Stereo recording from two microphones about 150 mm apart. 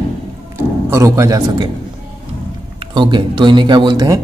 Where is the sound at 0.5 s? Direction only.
20° right (ahead or behind).